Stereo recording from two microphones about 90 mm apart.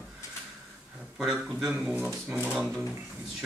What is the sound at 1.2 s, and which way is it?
Speech, centre (ahead or behind).